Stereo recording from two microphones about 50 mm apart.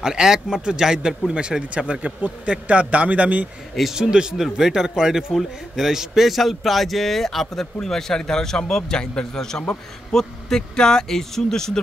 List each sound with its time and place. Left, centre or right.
0.0 s speech: centre; by 3.4 s right
3.9 s a man's voice: centre